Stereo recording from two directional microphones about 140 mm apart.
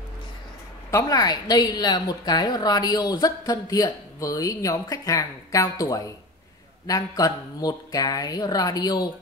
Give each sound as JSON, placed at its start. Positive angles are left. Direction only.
{"t": 0.9, "sound": "a woman's voice", "side_deg": 25}